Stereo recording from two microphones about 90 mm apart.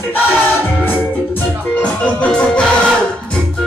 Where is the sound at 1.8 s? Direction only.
10° left (ahead or behind).